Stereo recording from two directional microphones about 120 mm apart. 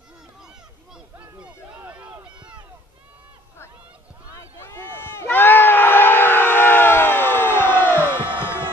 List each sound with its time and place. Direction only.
1.1 s a sound: 15° right (ahead or behind)
4.4 s crowd: 20° left (ahead or behind)
7.9 s crowd: 15° right (ahead or behind)